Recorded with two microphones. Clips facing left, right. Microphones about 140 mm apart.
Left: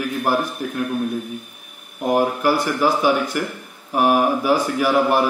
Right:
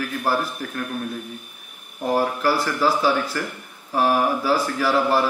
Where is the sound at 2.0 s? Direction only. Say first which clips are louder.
Left 3 dB; 15° left (ahead or behind).